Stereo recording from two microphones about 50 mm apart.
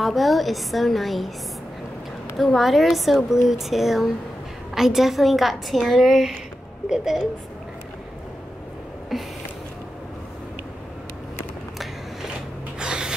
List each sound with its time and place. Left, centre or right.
0.0 s speech: centre
2.3 s speech: centre
9.1 s speech: centre
12.7 s a sound: centre